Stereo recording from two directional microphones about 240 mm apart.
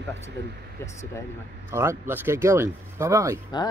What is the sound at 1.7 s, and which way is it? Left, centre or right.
Speech, centre.